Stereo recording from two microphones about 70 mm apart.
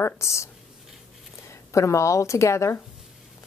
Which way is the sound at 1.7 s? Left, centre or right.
Left.